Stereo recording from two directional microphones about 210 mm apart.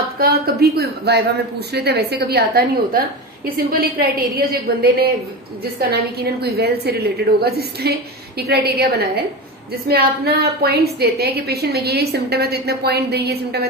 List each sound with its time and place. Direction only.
0.2 s speech: 50° right (ahead or behind)